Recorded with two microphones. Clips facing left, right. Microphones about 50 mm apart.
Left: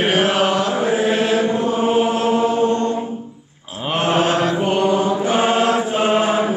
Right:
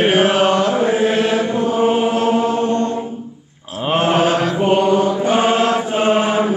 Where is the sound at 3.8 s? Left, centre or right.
Centre.